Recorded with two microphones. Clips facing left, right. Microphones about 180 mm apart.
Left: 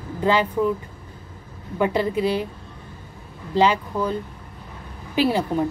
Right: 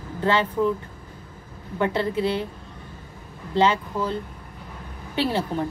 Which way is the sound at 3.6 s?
15° left (ahead or behind).